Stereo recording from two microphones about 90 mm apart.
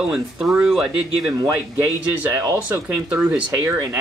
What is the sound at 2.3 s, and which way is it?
Speech, 30° right (ahead or behind).